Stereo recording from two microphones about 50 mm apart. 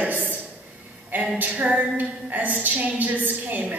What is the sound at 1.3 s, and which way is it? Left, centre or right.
A woman's voice, right.